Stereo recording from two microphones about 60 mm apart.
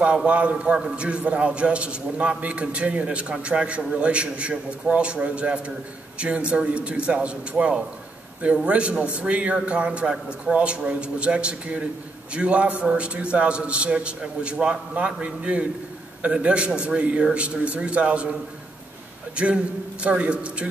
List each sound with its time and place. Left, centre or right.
0.0 s a man's voice: centre
19.3 s a man's voice: centre